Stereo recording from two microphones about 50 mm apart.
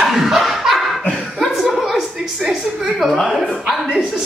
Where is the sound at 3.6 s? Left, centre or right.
Centre.